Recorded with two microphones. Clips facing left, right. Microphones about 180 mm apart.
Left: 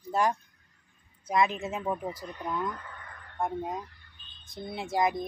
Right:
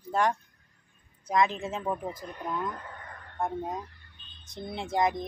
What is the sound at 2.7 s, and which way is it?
Radio, 35° right (ahead or behind).